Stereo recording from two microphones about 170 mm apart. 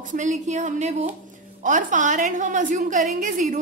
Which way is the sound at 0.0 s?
50° right (ahead or behind).